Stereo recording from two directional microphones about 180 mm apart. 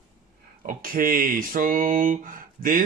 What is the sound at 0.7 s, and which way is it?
Speech, 50° right (ahead or behind).